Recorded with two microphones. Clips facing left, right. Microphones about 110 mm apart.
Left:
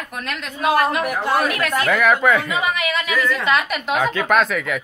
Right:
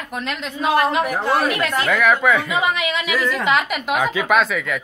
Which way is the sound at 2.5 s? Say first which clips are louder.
Right 1 dB; 20° right (ahead or behind).